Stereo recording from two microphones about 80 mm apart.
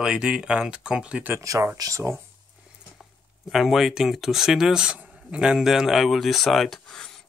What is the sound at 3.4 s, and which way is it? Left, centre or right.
Speech, centre.